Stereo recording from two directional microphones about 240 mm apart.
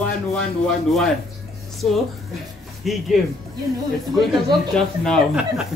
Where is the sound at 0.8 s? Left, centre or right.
Centre.